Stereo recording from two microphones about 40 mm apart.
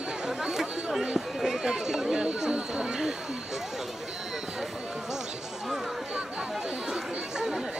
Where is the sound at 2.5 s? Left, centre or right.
Right.